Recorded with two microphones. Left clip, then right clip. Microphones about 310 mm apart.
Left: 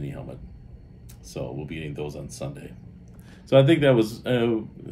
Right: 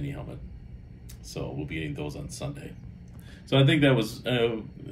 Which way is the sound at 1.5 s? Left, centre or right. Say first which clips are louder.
Even; centre.